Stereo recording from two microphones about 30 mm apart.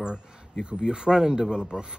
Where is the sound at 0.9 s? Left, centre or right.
Right.